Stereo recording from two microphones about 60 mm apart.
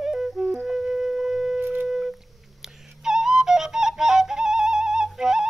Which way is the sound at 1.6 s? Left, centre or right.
Right.